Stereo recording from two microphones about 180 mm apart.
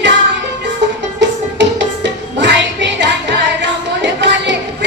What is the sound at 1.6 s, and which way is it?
Music, 80° right.